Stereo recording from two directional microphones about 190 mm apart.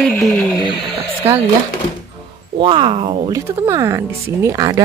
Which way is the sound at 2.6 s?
25° right (ahead or behind).